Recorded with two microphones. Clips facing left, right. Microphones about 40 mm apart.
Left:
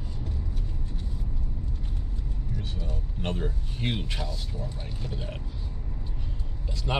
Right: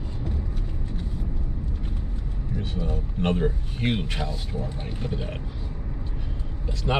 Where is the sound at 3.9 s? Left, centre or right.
Right.